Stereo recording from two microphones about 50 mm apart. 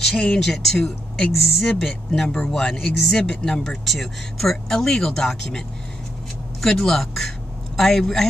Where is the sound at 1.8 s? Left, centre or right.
Centre.